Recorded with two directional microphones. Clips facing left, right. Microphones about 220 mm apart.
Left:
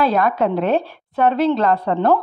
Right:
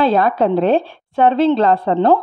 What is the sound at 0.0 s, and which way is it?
Speech, 30° right (ahead or behind).